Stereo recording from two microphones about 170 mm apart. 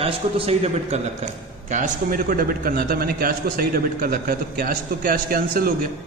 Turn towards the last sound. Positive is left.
turn(degrees=-55)  # may be behind; listen again after turning